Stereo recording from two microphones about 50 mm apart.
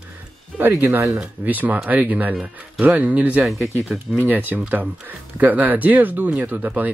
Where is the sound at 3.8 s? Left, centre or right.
Centre.